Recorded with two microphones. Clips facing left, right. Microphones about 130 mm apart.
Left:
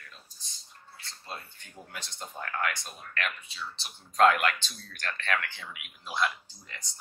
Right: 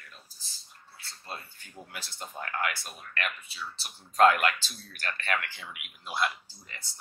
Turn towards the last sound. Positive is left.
turn(degrees=-5)  # may be behind; listen again after turning